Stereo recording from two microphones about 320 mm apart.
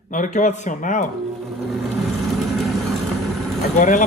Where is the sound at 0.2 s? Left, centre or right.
Left.